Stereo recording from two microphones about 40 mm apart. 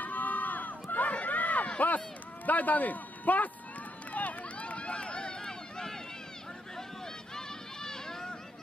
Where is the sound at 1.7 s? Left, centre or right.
Left.